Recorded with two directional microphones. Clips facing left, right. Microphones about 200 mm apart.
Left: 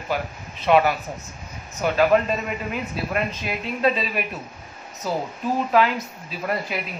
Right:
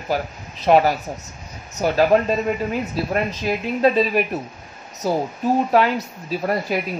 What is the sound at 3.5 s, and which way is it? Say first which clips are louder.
Speech: right 7 dB; 40° right (ahead or behind).